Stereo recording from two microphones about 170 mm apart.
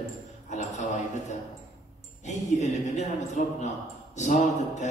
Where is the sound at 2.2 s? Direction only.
45° left (ahead or behind).